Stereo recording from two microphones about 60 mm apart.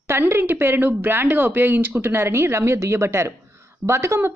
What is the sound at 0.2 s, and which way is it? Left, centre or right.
A woman's voice, right.